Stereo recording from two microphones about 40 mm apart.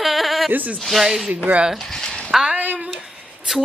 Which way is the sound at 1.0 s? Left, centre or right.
Centre.